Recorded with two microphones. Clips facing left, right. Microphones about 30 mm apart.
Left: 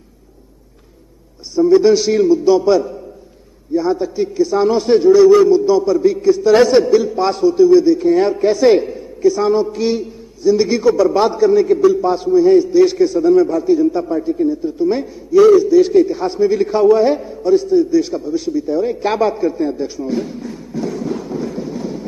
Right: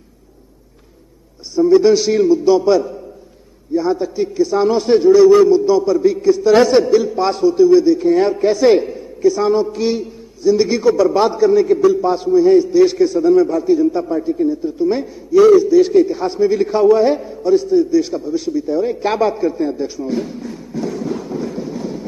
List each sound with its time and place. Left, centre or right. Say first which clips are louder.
1.5 s a man's voice: even; centre